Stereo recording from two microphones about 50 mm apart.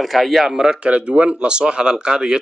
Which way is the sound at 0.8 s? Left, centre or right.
Right.